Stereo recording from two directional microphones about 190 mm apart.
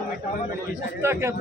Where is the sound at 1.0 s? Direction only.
15° right (ahead or behind).